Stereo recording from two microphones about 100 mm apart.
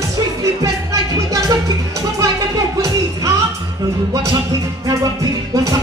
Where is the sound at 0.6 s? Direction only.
35° right (ahead or behind).